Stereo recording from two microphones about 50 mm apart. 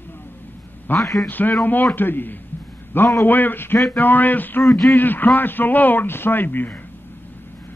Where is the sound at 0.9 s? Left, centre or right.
Left.